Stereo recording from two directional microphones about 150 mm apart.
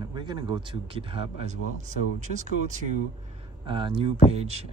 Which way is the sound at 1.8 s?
55° right (ahead or behind).